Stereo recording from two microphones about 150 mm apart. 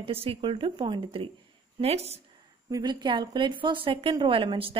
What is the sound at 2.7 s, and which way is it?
Speech, 30° right (ahead or behind).